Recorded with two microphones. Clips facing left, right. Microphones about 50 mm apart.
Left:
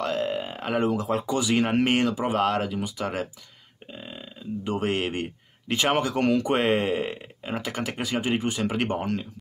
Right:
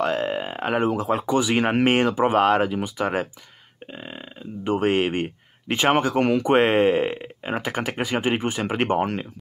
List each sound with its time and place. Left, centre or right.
0.0 s speech: right